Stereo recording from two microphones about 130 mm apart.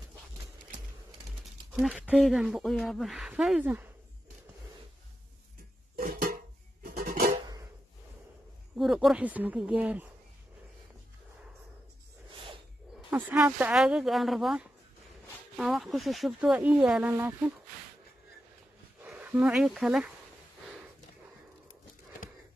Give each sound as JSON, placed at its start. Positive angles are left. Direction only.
{"t": 1.4, "sound": "a sound", "side_deg": 0}
{"t": 2.1, "sound": "speech", "side_deg": 0}
{"t": 6.9, "sound": "a sound", "side_deg": -90}
{"t": 8.7, "sound": "speech", "side_deg": 0}
{"t": 13.1, "sound": "speech", "side_deg": -10}
{"t": 17.1, "sound": "speech", "side_deg": -20}
{"t": 19.1, "sound": "speech", "side_deg": -10}